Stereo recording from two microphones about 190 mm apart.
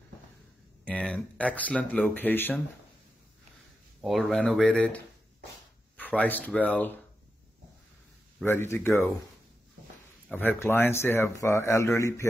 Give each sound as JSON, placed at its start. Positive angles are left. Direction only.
{"t": 0.8, "sound": "speech", "side_deg": 5}
{"t": 4.0, "sound": "speech", "side_deg": 0}
{"t": 8.5, "sound": "speech", "side_deg": 10}
{"t": 10.3, "sound": "speech", "side_deg": 10}